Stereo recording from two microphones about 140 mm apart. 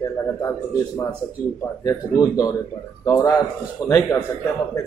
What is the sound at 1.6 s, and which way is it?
A man's voice, 25° left (ahead or behind).